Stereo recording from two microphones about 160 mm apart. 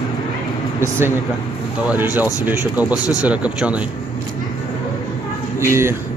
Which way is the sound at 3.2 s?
10° right (ahead or behind).